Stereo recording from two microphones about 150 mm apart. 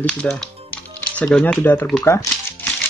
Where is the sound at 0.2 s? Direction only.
Centre (ahead or behind).